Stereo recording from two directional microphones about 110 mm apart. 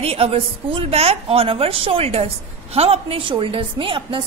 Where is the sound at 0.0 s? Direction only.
65° right (ahead or behind).